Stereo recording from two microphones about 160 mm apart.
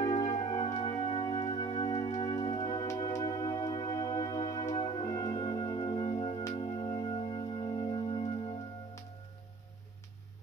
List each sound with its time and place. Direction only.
0.0 s music: 35° left (ahead or behind)